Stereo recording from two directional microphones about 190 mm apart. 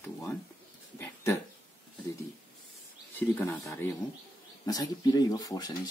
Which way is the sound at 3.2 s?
10° left (ahead or behind).